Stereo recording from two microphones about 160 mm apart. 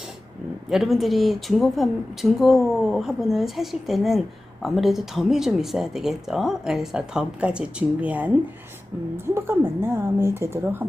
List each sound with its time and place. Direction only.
0.7 s a woman's voice: centre (ahead or behind)